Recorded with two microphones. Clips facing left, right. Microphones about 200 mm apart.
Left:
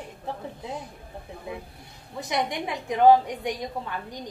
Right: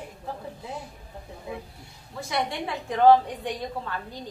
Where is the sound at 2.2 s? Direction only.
15° left (ahead or behind).